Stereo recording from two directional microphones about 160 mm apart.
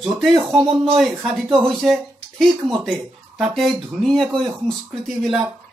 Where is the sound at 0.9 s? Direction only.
Centre (ahead or behind).